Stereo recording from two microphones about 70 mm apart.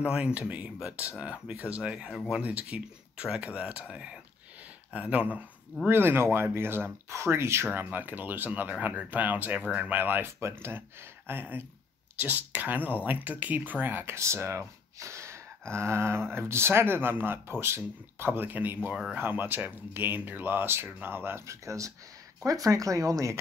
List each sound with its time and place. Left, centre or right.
0.0 s speech: centre
5.9 s speech: right
7.7 s speech: right
14.1 s speech: right